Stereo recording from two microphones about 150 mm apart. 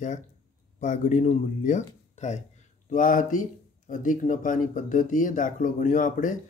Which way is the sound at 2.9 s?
60° left (ahead or behind).